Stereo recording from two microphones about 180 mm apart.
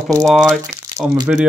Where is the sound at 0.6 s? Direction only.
20° right (ahead or behind).